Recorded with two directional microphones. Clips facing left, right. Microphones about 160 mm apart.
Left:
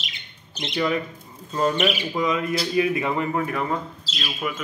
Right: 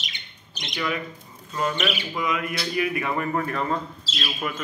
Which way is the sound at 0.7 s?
30° left (ahead or behind).